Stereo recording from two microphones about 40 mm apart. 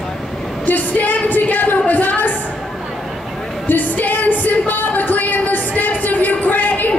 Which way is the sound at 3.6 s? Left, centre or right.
Left.